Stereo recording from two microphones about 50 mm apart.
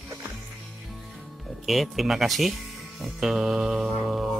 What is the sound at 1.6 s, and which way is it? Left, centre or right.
Speech, centre.